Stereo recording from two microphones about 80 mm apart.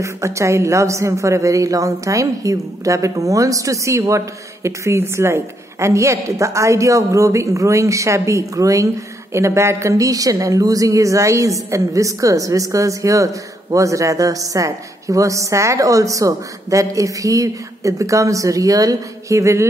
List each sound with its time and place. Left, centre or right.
0.0 s a woman's voice: right